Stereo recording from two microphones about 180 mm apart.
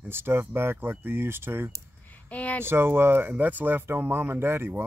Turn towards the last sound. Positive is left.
turn(degrees=-15)  # may be behind; listen again after turning